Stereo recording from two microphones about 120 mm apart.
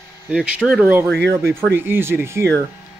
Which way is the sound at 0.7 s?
10° right (ahead or behind).